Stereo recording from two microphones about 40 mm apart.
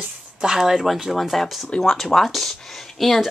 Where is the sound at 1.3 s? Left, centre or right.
Centre.